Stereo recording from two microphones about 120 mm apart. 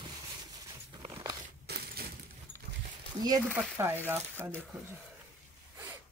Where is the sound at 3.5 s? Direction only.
20° right (ahead or behind).